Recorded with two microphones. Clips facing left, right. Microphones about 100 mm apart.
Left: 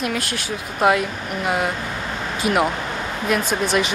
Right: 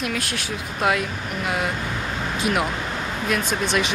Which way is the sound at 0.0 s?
Centre (ahead or behind).